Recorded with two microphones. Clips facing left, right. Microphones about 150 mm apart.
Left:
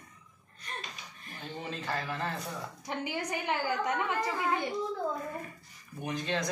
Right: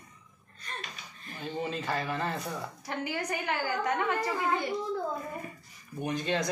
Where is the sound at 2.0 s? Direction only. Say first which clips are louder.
Right 3 dB; centre (ahead or behind).